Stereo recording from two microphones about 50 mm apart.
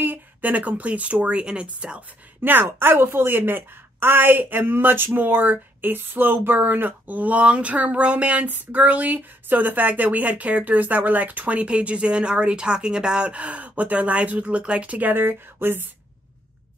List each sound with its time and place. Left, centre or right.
0.0 s speech: right
2.4 s a woman's voice: right